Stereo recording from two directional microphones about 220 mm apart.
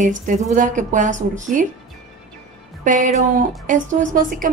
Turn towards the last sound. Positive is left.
turn(degrees=-40)  # may be behind; listen again after turning